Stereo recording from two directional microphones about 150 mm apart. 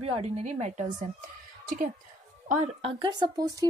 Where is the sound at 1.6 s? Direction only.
65° right (ahead or behind).